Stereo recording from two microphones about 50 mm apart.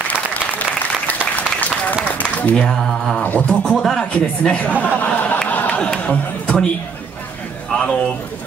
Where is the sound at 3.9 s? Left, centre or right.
Centre.